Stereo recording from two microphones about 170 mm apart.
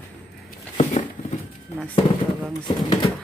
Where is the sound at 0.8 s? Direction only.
35° left (ahead or behind).